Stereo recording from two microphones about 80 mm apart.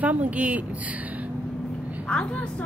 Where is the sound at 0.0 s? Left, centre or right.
Centre.